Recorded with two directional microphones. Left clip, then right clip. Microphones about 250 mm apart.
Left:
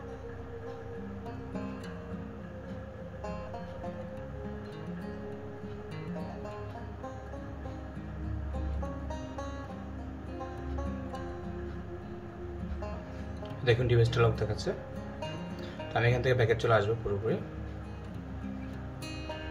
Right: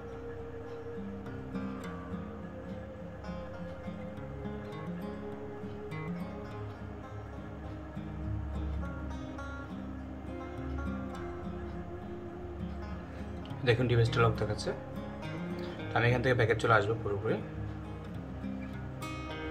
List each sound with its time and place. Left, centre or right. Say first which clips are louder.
13.7 s speech: left 2 dB; centre
15.9 s speech: even; centre